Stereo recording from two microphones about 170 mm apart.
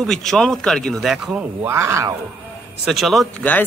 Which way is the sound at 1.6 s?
15° right (ahead or behind).